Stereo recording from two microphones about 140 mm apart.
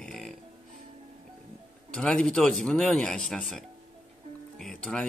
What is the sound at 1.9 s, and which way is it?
Speech, 5° left (ahead or behind).